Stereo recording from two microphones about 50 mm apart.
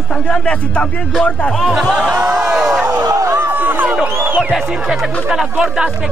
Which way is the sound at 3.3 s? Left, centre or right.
Right.